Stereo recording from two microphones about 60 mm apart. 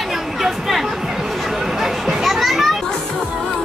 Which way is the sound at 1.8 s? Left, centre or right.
Centre.